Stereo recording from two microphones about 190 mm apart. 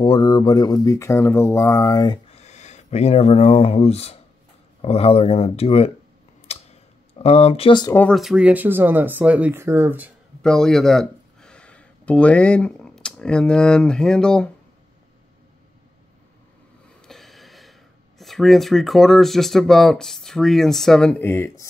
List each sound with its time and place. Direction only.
0.0 s speech: 20° left (ahead or behind)
2.3 s speech: 35° left (ahead or behind)
6.4 s a sound: 35° left (ahead or behind)
7.9 s speech: 5° left (ahead or behind)
10.4 s speech: 5° left (ahead or behind)
17.0 s speech: centre (ahead or behind)